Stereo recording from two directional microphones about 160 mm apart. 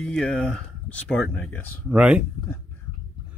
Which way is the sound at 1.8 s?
5° right (ahead or behind).